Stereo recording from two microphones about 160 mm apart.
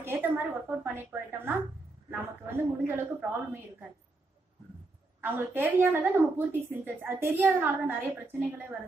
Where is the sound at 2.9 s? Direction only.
10° right (ahead or behind).